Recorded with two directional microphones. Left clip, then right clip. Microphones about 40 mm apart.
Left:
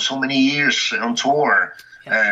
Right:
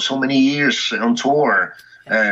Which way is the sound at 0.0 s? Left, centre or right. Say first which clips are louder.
Right 1 dB; right.